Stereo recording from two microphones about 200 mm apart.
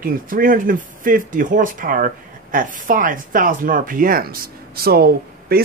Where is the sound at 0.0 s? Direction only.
45° right (ahead or behind).